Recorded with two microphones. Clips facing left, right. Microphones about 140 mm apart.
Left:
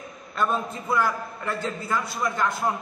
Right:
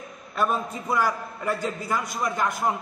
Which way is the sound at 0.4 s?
10° right (ahead or behind).